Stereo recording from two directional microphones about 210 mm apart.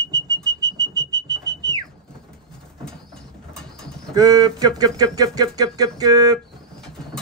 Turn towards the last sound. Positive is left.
turn(degrees=-20)  # may be behind; listen again after turning